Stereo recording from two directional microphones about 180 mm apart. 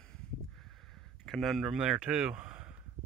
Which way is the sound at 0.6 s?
Centre (ahead or behind).